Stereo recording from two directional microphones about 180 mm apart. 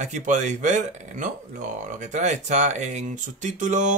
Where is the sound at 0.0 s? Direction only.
40° right (ahead or behind).